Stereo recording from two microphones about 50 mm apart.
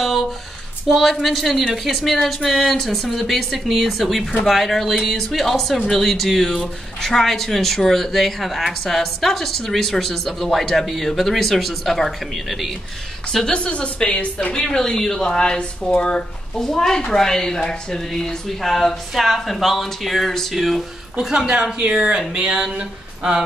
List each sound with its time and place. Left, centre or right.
0.8 s speech: centre
13.3 s a woman's voice: centre
14.5 s a woman's voice: centre
16.5 s speech: centre
21.3 s a sound: centre